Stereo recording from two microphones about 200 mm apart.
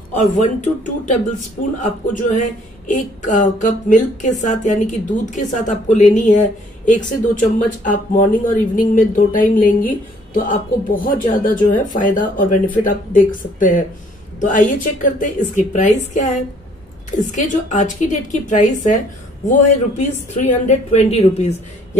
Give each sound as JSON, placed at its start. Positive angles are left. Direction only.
{"t": 0.1, "sound": "speech", "side_deg": 40}
{"t": 17.4, "sound": "speech", "side_deg": 35}